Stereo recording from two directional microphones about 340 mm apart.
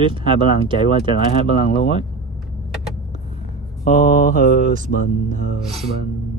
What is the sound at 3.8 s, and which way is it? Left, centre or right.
Mantra, left.